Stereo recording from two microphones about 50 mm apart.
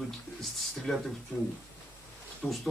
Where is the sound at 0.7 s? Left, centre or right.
Centre.